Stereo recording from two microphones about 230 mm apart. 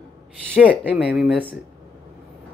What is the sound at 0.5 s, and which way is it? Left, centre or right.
Speech, centre.